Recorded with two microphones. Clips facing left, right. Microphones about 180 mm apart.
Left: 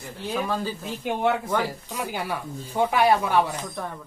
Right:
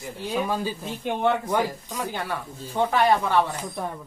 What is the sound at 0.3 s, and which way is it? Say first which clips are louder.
Speech: right 1 dB; 10° right (ahead or behind).